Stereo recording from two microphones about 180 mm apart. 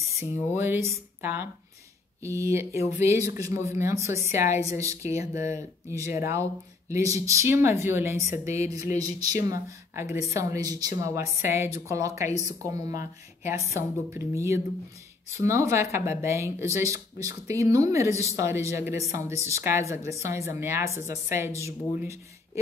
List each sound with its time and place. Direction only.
0.2 s speech: 15° right (ahead or behind)
8.7 s a sound: 20° right (ahead or behind)
9.4 s speech: 15° right (ahead or behind)